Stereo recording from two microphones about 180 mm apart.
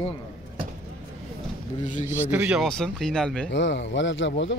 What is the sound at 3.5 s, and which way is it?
Speech, 80° left.